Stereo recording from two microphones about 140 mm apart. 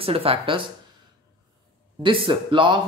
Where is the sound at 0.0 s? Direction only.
40° right (ahead or behind).